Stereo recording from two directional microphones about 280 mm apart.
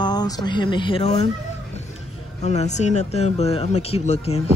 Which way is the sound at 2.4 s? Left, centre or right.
Left.